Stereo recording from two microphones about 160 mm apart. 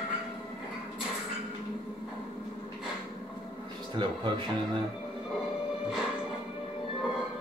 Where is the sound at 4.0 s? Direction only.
30° right (ahead or behind).